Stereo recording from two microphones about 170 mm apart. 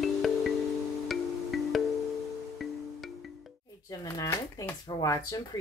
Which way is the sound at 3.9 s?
20° left (ahead or behind).